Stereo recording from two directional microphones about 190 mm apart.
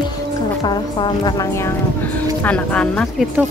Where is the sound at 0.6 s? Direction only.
25° left (ahead or behind); by 3.2 s 5° left (ahead or behind).